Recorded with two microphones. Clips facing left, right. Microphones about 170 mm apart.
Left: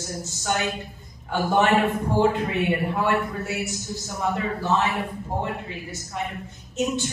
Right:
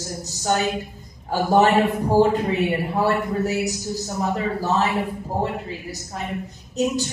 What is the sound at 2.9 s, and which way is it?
Speech, 35° right (ahead or behind).